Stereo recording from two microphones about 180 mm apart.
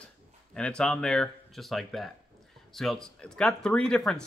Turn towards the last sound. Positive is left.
turn(degrees=5)  # may be behind; listen again after turning